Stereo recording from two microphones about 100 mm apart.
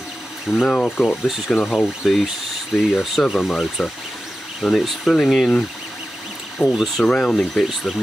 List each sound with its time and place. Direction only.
0.5 s speech: 5° left (ahead or behind)
6.6 s speech: 20° left (ahead or behind)
7.0 s speech: 5° left (ahead or behind)